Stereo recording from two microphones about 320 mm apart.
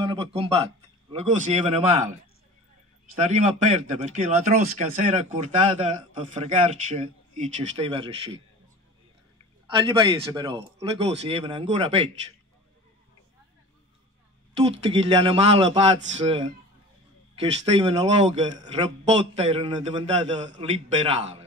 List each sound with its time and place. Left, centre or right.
0.0 s a man's voice: centre
3.2 s a man's voice: right
9.7 s a man's voice: centre
14.6 s a man's voice: centre